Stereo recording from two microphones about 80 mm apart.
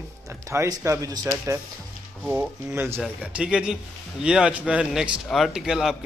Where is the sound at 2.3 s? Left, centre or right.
Right.